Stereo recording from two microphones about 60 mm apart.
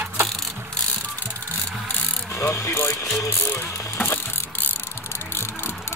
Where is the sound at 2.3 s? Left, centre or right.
Left.